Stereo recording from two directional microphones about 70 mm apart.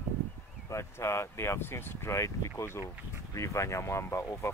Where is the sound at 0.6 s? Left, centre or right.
Left.